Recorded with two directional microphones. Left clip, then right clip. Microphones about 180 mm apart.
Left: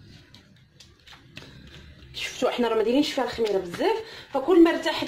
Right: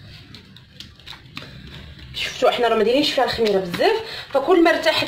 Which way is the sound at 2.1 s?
35° left (ahead or behind).